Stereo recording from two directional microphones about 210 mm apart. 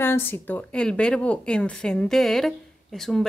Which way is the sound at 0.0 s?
10° left (ahead or behind).